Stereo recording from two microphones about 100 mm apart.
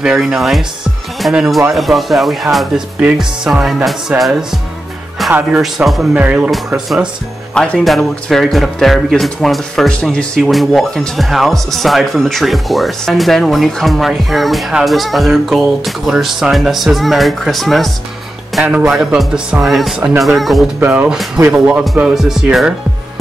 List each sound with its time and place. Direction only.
0.0 s speech: 5° right (ahead or behind)
5.2 s music: centre (ahead or behind)
5.6 s speech: centre (ahead or behind)
6.1 s speech: 10° right (ahead or behind)
7.5 s speech: 10° left (ahead or behind)
7.8 s speech: centre (ahead or behind)
18.6 s speech: 10° right (ahead or behind)
20.8 s speech: 15° right (ahead or behind)
22.0 s speech: 5° right (ahead or behind)